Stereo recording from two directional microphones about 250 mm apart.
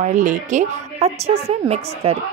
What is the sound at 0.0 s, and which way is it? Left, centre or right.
A woman's voice, right.